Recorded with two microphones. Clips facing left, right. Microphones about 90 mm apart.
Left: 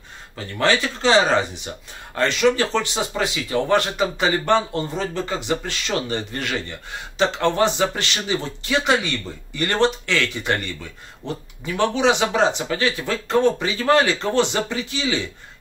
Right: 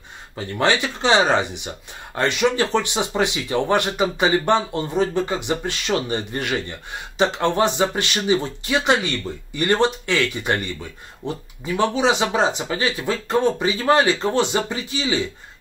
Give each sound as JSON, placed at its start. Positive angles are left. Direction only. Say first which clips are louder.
{"t": 0.4, "sound": "speech", "louder": "even", "side_deg": -15}